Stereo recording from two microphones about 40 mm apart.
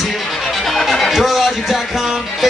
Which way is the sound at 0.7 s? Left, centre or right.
Centre.